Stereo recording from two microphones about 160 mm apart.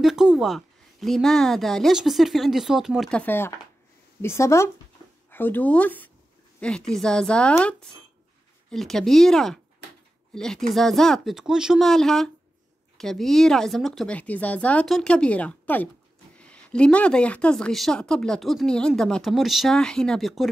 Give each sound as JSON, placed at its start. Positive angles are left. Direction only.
{"t": 0.0, "sound": "a woman's voice", "side_deg": -5}